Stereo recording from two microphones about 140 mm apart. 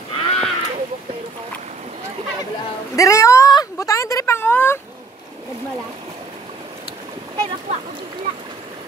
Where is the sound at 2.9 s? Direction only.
25° left (ahead or behind).